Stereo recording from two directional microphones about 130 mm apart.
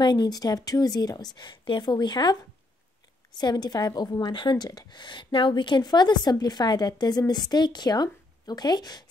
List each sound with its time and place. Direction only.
0.0 s a woman's voice: 35° left (ahead or behind)
3.3 s a woman's voice: 30° left (ahead or behind)